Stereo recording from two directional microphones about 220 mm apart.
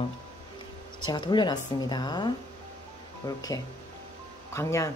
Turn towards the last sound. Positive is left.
turn(degrees=15)  # may be behind; listen again after turning